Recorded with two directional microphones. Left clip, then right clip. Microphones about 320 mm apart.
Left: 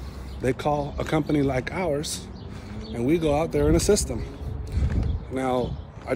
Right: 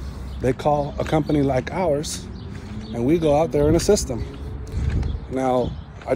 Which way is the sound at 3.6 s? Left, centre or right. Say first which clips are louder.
Right 3 dB; centre.